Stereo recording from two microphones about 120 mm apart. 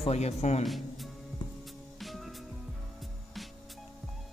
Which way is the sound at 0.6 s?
Centre (ahead or behind).